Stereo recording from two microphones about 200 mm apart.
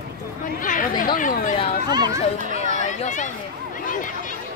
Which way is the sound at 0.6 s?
40° left (ahead or behind).